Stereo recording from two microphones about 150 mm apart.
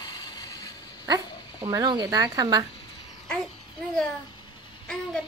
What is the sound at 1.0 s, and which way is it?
Speech, 25° right (ahead or behind).